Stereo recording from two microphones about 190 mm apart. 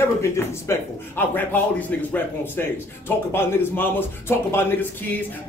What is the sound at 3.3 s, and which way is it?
A man's voice, 10° left (ahead or behind).